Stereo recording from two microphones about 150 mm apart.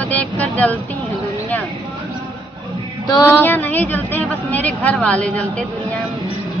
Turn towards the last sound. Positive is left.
turn(degrees=10)  # may be behind; listen again after turning